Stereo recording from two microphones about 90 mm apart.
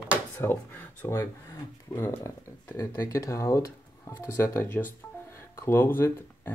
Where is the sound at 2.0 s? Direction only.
35° left (ahead or behind).